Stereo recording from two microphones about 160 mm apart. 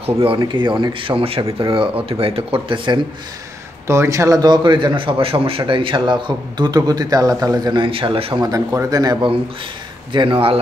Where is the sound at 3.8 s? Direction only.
15° right (ahead or behind).